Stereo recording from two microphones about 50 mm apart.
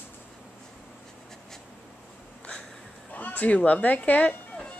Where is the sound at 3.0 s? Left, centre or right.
Left.